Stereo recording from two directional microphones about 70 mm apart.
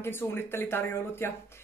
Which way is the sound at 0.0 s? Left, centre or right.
Left.